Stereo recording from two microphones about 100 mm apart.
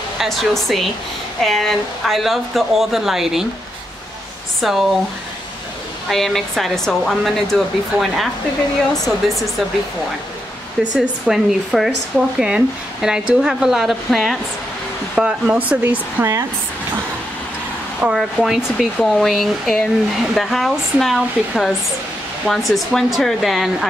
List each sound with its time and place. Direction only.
0.2 s speech: centre (ahead or behind)
4.6 s speech: centre (ahead or behind)
6.0 s speech: 5° left (ahead or behind)
10.8 s speech: 5° right (ahead or behind)
15.1 s speech: 10° right (ahead or behind)
18.0 s speech: 5° right (ahead or behind)